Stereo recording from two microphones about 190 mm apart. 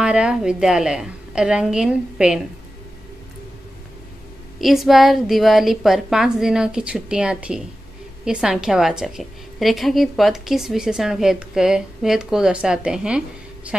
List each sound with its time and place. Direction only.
0.0 s a woman's voice: 5° right (ahead or behind)
4.6 s a woman's voice: centre (ahead or behind)